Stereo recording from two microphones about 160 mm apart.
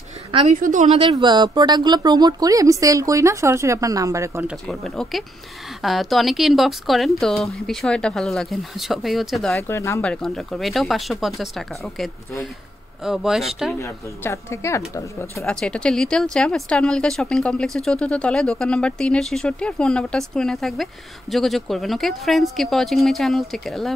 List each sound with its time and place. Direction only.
0.5 s a woman's voice: 55° right (ahead or behind)
1.0 s speech: 30° right (ahead or behind)
4.6 s speech: centre (ahead or behind)
9.6 s speech: 15° left (ahead or behind)
10.0 s speech: 5° left (ahead or behind)
13.7 s speech: 20° left (ahead or behind)
15.4 s speech: 5° left (ahead or behind)